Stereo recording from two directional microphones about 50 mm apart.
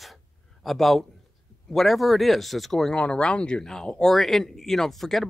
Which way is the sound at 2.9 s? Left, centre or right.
Left.